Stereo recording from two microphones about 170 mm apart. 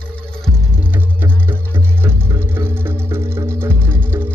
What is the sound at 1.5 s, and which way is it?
Music, 15° right (ahead or behind).